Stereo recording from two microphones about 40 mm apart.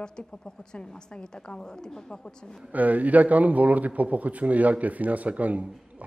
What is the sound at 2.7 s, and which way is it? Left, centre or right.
A man's voice, right.